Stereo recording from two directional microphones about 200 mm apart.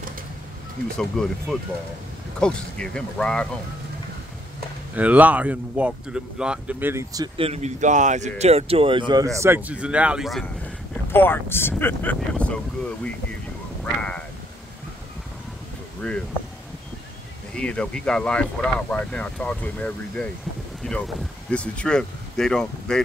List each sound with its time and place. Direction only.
0.9 s speech: centre (ahead or behind)
4.9 s speech: 10° right (ahead or behind)
7.3 s speech: 30° right (ahead or behind); by 10.4 s centre (ahead or behind)
11.1 s speech: 10° left (ahead or behind)
13.8 s speech: 5° left (ahead or behind)
16.0 s speech: 5° left (ahead or behind)
17.6 s speech: 5° left (ahead or behind)